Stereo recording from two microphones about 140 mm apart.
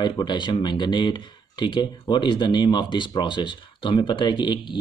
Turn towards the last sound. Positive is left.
turn(degrees=35)  # may be behind; listen again after turning